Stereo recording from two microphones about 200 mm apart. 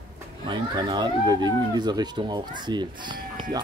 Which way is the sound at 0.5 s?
25° right (ahead or behind).